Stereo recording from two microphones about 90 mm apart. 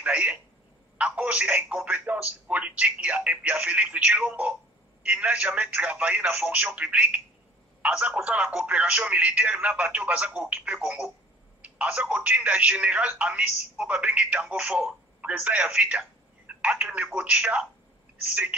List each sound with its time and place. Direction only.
0.0 s speech: 15° right (ahead or behind)